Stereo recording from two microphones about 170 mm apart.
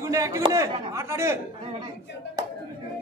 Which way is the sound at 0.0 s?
20° right (ahead or behind).